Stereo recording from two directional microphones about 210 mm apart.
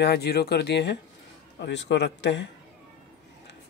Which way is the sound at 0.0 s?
50° left (ahead or behind).